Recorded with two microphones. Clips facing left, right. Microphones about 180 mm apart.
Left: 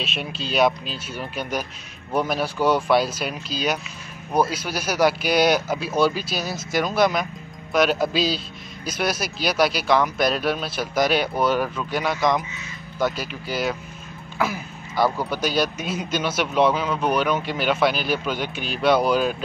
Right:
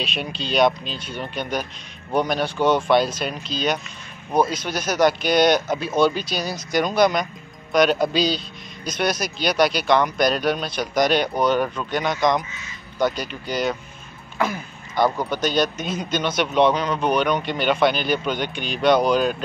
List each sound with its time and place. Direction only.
0.0 s speech: centre (ahead or behind)